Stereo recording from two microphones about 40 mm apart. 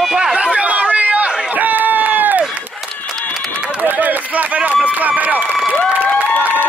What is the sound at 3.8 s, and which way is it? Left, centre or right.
Run, right.